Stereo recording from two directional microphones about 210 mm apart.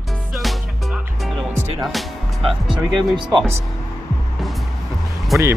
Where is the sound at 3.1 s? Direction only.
20° right (ahead or behind).